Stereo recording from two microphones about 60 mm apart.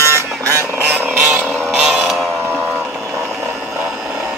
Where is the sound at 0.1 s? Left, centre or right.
Right.